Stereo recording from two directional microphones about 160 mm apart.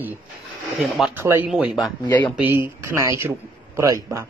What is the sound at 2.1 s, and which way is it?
Speech, 10° left (ahead or behind).